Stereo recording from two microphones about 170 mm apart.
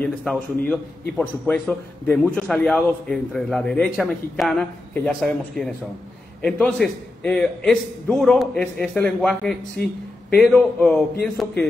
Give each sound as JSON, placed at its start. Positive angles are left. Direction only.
{"t": 0.0, "sound": "a man's voice", "side_deg": 5}